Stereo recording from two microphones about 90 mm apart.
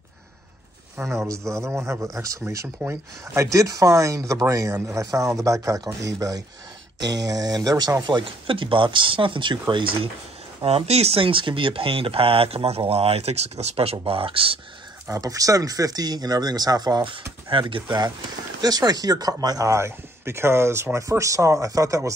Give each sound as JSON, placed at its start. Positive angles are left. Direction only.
{"t": 0.9, "sound": "speech", "side_deg": -30}
{"t": 10.6, "sound": "speech", "side_deg": -90}
{"t": 11.1, "sound": "speech", "side_deg": -75}
{"t": 15.0, "sound": "speech", "side_deg": -40}
{"t": 17.0, "sound": "speech", "side_deg": -65}
{"t": 18.6, "sound": "speech", "side_deg": -45}